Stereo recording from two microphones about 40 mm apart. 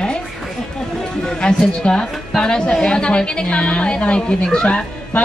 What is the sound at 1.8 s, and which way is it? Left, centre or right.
Speech, left.